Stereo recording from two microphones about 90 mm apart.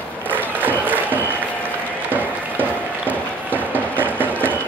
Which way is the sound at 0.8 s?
20° right (ahead or behind).